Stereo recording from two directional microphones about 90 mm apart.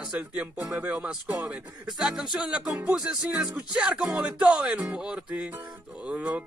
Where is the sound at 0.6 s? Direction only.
15° right (ahead or behind).